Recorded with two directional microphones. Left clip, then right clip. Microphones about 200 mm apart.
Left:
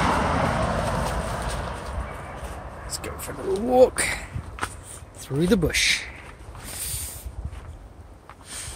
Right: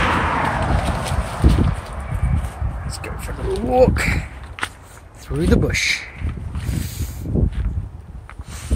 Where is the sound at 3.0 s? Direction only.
Centre (ahead or behind).